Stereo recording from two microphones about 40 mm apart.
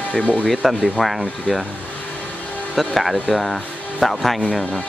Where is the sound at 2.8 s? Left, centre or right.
Centre.